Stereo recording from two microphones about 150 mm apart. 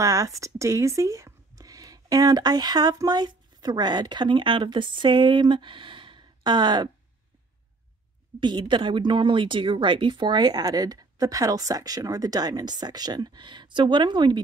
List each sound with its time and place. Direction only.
0.0 s speech: 20° right (ahead or behind)
8.4 s speech: 30° right (ahead or behind)